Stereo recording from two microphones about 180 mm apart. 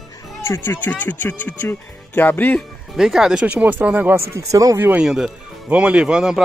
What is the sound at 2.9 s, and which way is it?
Speech, centre (ahead or behind).